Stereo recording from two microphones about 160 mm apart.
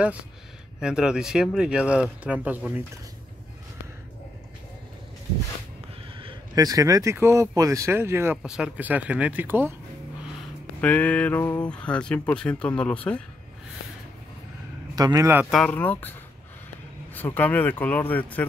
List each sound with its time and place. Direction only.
0.7 s speech: 5° right (ahead or behind)
6.1 s speech: 30° right (ahead or behind)
8.4 s speech: 5° right (ahead or behind)
10.8 s speech: 10° left (ahead or behind)
15.0 s speech: 25° right (ahead or behind)
15.5 s speech: 10° left (ahead or behind)